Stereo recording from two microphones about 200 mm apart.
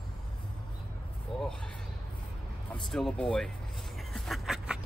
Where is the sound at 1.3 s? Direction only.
5° left (ahead or behind).